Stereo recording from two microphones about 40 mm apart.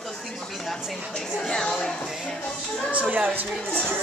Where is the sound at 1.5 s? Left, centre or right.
Centre.